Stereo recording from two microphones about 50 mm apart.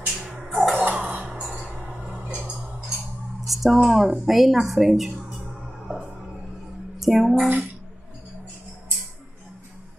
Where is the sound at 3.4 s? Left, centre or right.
Centre.